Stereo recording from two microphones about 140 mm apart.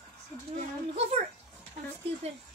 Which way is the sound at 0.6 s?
50° right (ahead or behind).